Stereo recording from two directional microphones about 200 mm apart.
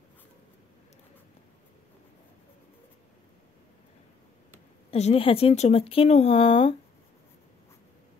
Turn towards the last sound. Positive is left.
turn(degrees=30)  # may be behind; listen again after turning